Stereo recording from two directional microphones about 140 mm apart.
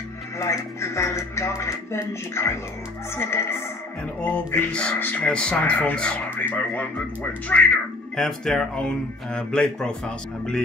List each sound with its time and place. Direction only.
0.4 s speech: 20° left (ahead or behind)